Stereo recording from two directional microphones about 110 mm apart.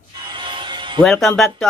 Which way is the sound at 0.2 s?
45° right (ahead or behind).